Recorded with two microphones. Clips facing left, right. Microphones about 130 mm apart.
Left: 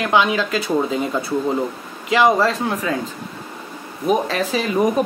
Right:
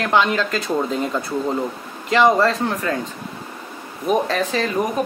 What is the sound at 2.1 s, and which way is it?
Speech, 5° left (ahead or behind).